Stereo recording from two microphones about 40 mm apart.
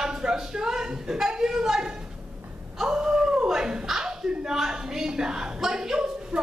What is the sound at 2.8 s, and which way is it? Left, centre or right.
Wail, right.